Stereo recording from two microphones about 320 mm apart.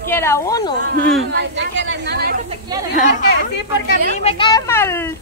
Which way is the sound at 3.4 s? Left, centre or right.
Left.